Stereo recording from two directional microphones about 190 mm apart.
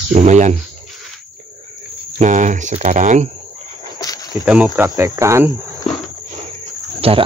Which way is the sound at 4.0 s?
20° left (ahead or behind).